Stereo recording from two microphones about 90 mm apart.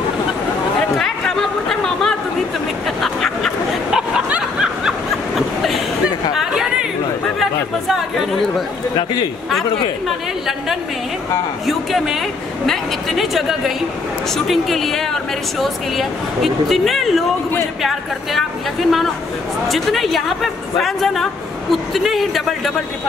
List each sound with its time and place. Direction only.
0.7 s chatter: 5° left (ahead or behind)
3.0 s a sound: 5° left (ahead or behind)
4.3 s snicker: 10° right (ahead or behind)
6.3 s chatter: 5° right (ahead or behind)
7.9 s chatter: centre (ahead or behind)
8.9 s a man's voice: 45° left (ahead or behind)
9.5 s speech: centre (ahead or behind)